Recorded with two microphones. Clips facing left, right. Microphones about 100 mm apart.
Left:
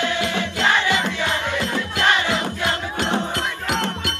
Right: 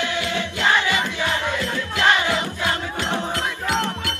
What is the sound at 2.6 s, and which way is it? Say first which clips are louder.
Music: left 1 dB; 20° left (ahead or behind).